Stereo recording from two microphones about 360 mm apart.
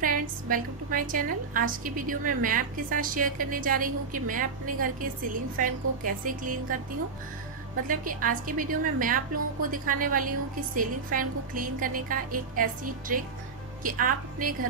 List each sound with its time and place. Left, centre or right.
0.0 s a woman's voice: right
7.9 s a woman's voice: right